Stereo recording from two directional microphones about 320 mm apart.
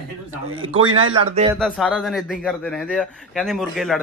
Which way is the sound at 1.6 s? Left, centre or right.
Centre.